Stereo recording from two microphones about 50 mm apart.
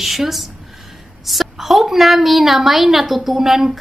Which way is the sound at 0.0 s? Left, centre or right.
Centre.